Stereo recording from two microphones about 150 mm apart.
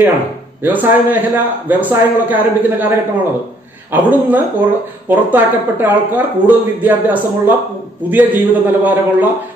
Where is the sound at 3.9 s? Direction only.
10° right (ahead or behind).